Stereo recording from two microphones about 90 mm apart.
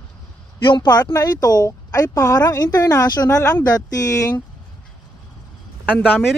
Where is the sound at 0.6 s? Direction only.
60° left (ahead or behind).